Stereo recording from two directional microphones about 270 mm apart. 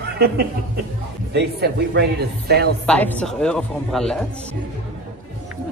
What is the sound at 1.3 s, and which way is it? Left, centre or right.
Speech, right.